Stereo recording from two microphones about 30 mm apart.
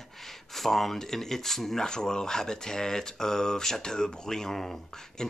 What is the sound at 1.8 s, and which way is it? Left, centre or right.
Speech, left.